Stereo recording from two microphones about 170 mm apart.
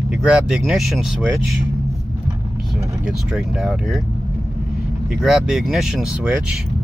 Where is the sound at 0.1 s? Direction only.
5° right (ahead or behind).